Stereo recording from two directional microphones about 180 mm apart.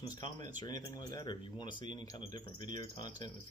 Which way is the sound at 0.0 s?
20° left (ahead or behind).